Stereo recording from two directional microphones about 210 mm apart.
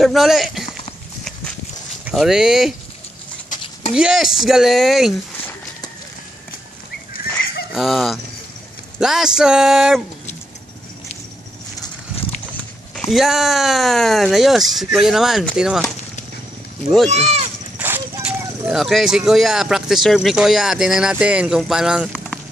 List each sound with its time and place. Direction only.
0.0 s speech: centre (ahead or behind)
2.0 s speech: 5° right (ahead or behind)
3.9 s speech: 5° right (ahead or behind)
7.7 s speech: centre (ahead or behind)
12.5 s speech: centre (ahead or behind)
17.1 s speech: 30° right (ahead or behind)
17.7 s horse: 10° right (ahead or behind)
18.7 s speech: centre (ahead or behind)